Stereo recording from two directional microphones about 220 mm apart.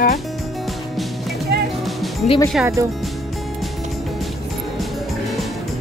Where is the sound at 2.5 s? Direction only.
10° right (ahead or behind).